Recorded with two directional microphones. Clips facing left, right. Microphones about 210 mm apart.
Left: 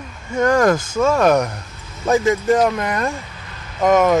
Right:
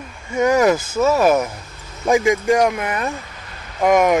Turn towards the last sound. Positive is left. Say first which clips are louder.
# even
turn(degrees=-10)  # may be behind; listen again after turning